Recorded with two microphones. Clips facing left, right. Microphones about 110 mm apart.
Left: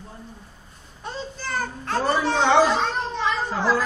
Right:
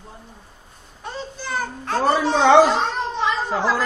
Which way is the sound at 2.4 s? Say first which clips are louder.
Right 5 dB; 75° right (ahead or behind).